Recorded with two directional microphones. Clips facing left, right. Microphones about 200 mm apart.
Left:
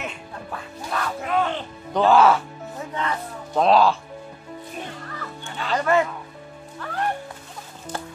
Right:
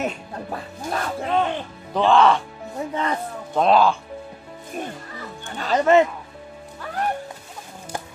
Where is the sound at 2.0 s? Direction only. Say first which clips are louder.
Even; 5° left (ahead or behind).